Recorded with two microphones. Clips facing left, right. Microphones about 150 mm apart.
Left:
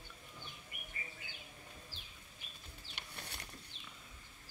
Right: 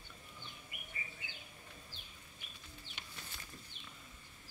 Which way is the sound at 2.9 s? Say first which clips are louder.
Left 4 dB; 70° left (ahead or behind).